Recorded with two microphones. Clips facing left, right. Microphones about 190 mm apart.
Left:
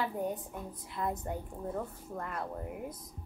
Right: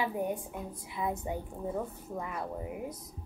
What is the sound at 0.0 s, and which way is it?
A woman's voice, 10° right (ahead or behind).